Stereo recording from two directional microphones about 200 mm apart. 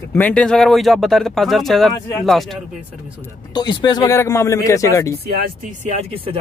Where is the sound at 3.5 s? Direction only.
20° left (ahead or behind).